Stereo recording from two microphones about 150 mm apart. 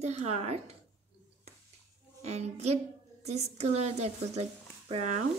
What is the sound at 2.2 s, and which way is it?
Speech, 45° right (ahead or behind).